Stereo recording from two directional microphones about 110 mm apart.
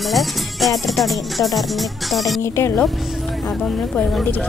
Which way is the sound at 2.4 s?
20° left (ahead or behind).